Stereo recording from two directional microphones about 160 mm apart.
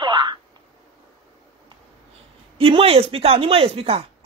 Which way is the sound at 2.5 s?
35° right (ahead or behind).